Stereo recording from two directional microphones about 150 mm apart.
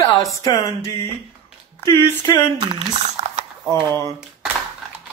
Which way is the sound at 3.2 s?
50° right (ahead or behind).